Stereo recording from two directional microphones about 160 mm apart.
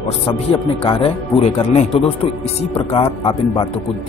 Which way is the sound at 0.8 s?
35° left (ahead or behind).